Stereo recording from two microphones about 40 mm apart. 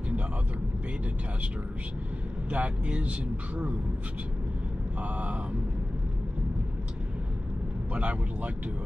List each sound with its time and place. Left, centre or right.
2.5 s speech: right
5.0 s speech: right
7.9 s speech: right